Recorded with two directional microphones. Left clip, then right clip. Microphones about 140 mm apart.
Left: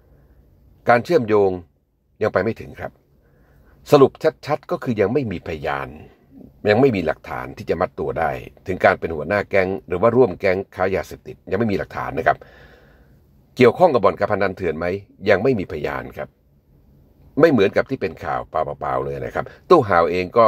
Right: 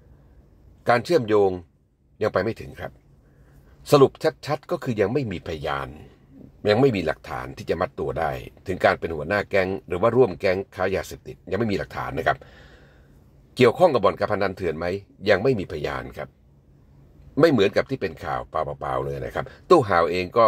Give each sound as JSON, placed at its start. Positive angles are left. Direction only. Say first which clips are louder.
{"t": 0.8, "sound": "speech", "louder": "left 4 dB", "side_deg": 20}
{"t": 17.4, "sound": "speech", "louder": "left 3 dB", "side_deg": 20}